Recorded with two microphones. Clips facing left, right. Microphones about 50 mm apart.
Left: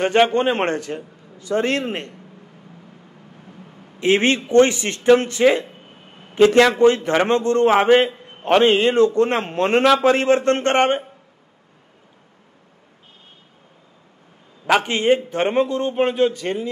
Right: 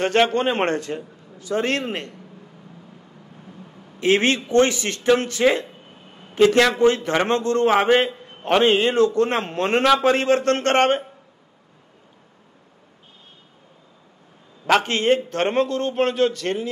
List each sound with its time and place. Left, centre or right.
0.0 s a man's voice: centre
1.4 s a man's voice: left
4.0 s a man's voice: left
7.7 s a man's voice: centre
8.1 s a sound: centre
8.6 s a man's voice: left
10.1 s a man's voice: left; by 11.1 s centre
14.7 s a man's voice: centre